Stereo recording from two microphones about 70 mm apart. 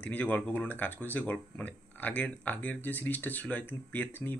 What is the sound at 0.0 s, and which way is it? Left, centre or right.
Speech, left.